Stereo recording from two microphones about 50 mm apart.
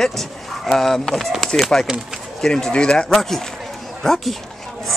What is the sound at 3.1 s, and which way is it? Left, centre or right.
Speech, centre.